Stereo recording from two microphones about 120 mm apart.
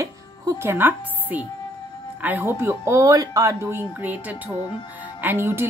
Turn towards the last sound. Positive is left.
turn(degrees=-20)  # may be behind; listen again after turning